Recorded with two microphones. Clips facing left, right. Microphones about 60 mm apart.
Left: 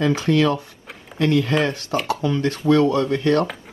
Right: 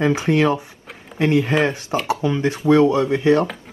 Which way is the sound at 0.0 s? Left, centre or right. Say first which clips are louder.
Right 1 dB; right.